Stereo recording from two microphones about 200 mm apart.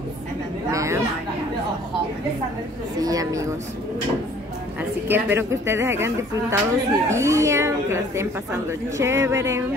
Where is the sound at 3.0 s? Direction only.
20° right (ahead or behind).